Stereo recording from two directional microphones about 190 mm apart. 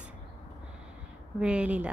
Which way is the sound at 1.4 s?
5° right (ahead or behind).